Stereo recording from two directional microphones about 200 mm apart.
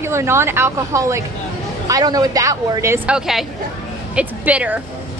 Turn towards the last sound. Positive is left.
turn(degrees=-10)  # may be behind; listen again after turning